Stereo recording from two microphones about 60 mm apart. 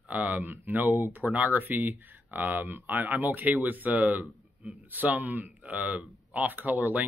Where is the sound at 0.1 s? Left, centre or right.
Right.